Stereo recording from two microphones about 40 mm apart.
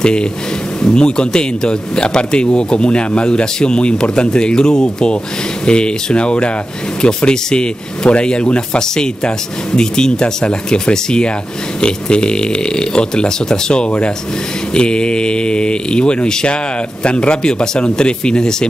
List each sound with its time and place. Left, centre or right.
0.0 s speech: left